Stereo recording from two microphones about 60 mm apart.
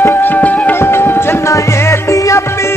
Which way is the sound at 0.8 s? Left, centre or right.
Left.